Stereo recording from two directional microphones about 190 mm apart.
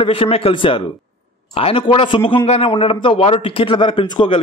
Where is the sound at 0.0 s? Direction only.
30° left (ahead or behind).